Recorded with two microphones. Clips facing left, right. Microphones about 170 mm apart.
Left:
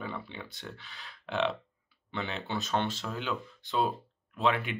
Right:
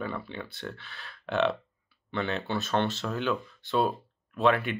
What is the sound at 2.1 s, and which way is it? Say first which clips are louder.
Speech: right 5 dB; 15° left (ahead or behind).